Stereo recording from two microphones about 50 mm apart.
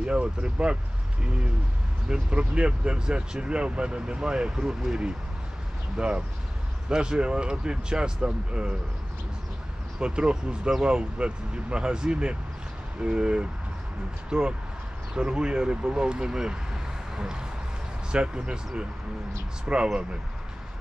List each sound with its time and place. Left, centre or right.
0.0 s speech: centre
2.0 s speech: centre
9.9 s speech: centre
19.7 s speech: right